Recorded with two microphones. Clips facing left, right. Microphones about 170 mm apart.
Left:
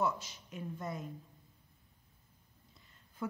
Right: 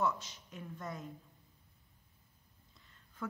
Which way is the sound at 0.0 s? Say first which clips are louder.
Even; 5° left (ahead or behind).